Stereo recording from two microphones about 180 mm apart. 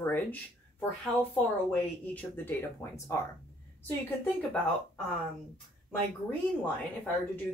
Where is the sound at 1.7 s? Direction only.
10° left (ahead or behind).